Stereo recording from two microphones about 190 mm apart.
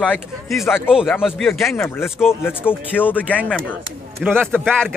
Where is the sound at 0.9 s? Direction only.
5° right (ahead or behind).